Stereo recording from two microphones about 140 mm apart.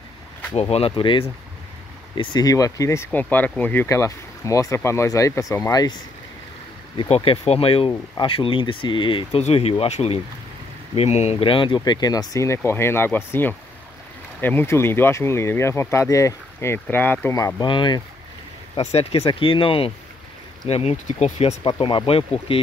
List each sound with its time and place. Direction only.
0.6 s speech: 45° left (ahead or behind); by 5.9 s 25° left (ahead or behind)
7.4 s speech: 45° left (ahead or behind); by 17.6 s 25° left (ahead or behind)
17.6 s speech: 35° left (ahead or behind)
18.8 s speech: 50° left (ahead or behind)
21.6 s speech: 35° left (ahead or behind)